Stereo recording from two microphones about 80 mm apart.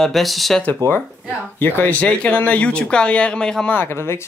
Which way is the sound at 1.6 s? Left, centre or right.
Left.